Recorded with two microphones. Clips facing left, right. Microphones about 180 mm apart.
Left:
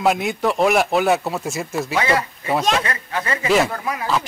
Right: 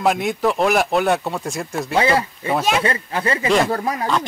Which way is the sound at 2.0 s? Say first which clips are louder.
Right 3 dB; 30° right (ahead or behind).